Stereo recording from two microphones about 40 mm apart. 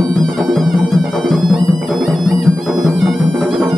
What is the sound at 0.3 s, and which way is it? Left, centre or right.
Music, centre.